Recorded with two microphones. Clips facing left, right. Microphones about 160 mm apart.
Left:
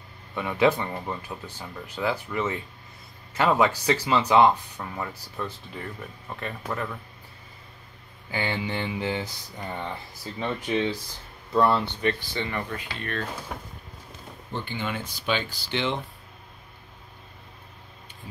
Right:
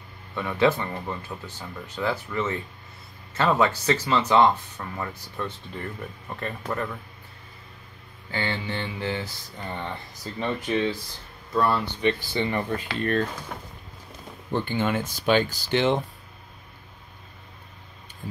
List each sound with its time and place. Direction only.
0.3 s speech: 15° left (ahead or behind)
8.3 s speech: 15° left (ahead or behind)
11.5 s speech: 25° left (ahead or behind)
12.0 s speech: 25° right (ahead or behind)
13.5 s speech: 5° left (ahead or behind)
14.5 s speech: 50° right (ahead or behind)